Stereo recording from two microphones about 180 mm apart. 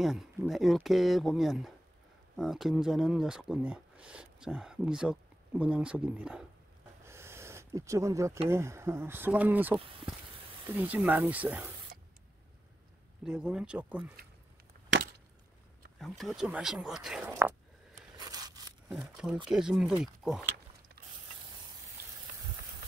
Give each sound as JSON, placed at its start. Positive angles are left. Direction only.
{"t": 0.0, "sound": "speech", "side_deg": 0}
{"t": 7.1, "sound": "a sound", "side_deg": -15}
{"t": 8.5, "sound": "speech", "side_deg": -15}
{"t": 13.2, "sound": "speech", "side_deg": -5}
{"t": 16.0, "sound": "speech", "side_deg": 0}
{"t": 18.1, "sound": "scissors", "side_deg": -20}
{"t": 18.9, "sound": "speech", "side_deg": 0}